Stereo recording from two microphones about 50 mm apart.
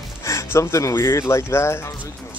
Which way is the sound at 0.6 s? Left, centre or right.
Left.